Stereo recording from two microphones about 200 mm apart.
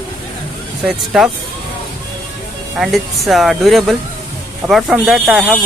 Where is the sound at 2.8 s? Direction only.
Centre (ahead or behind).